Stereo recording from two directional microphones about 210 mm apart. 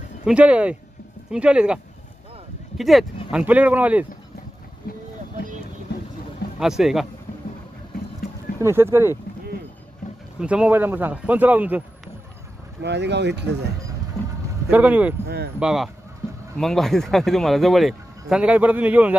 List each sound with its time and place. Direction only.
0.2 s speech: 5° right (ahead or behind)
2.8 s a man's voice: centre (ahead or behind)
4.9 s vehicle: 45° left (ahead or behind)
6.6 s speech: centre (ahead or behind)
8.5 s a man's voice: 10° right (ahead or behind)
10.4 s a man's voice: 5° right (ahead or behind)
12.8 s speech: 55° right (ahead or behind)
14.7 s a man's voice: 5° right (ahead or behind)
15.2 s speech: 50° right (ahead or behind)
15.6 s speech: centre (ahead or behind)